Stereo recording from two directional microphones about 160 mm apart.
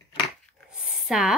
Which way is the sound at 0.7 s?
5° right (ahead or behind).